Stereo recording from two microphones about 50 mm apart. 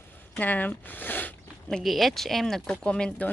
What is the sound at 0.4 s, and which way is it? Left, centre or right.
Speech, left.